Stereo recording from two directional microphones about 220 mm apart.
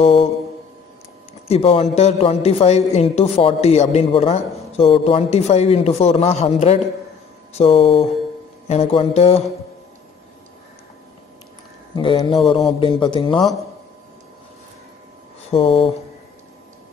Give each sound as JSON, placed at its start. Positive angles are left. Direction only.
{"t": 0.0, "sound": "a woman's voice", "side_deg": 25}
{"t": 1.5, "sound": "a woman's voice", "side_deg": 25}
{"t": 11.9, "sound": "a woman's voice", "side_deg": 20}
{"t": 15.5, "sound": "a woman's voice", "side_deg": 25}